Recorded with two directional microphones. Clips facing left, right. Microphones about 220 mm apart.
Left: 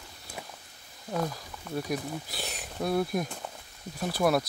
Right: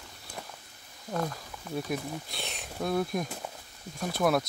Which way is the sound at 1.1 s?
Centre (ahead or behind).